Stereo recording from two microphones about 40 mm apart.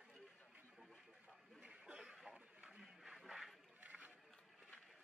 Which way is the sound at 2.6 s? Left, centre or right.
Centre.